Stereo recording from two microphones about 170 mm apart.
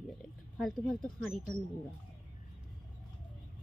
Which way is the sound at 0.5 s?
Centre (ahead or behind).